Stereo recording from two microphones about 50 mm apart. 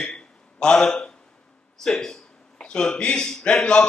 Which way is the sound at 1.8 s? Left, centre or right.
Centre.